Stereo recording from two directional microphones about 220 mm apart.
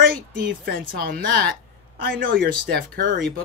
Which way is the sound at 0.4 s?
40° right (ahead or behind).